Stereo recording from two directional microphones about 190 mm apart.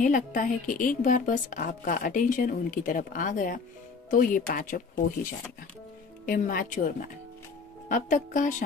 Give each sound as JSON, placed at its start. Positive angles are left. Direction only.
{"t": 0.0, "sound": "speech", "side_deg": 45}
{"t": 6.2, "sound": "speech", "side_deg": 45}
{"t": 7.9, "sound": "speech", "side_deg": 40}